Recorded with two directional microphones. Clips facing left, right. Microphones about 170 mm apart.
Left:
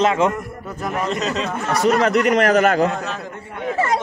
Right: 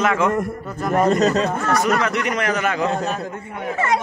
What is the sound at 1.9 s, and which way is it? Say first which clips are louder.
Speech: left 5 dB; 40° left (ahead or behind).